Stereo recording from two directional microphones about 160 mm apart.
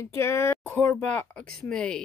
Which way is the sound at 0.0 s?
15° left (ahead or behind).